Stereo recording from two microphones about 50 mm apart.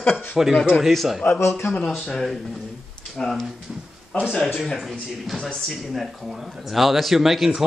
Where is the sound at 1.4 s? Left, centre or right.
Left.